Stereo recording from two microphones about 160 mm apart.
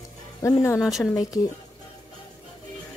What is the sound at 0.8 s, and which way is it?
Speech, centre (ahead or behind).